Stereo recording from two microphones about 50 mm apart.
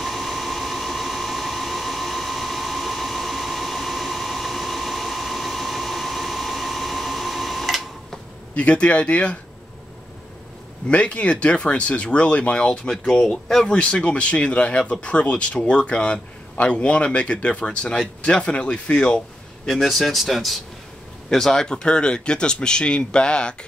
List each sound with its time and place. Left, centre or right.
0.0 s a sound: centre
8.5 s speech: left
10.9 s speech: left; by 13.7 s centre
13.7 s speech: centre
19.6 s speech: centre
21.3 s speech: centre